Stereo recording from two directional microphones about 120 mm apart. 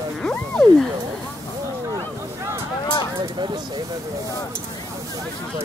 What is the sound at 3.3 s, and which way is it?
Speech, 40° right (ahead or behind).